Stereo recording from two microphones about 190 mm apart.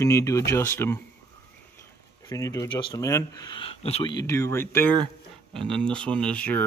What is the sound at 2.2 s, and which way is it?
Speech, 15° left (ahead or behind).